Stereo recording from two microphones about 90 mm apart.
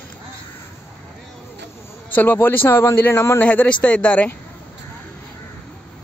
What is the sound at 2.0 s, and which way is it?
Speech, 20° left (ahead or behind).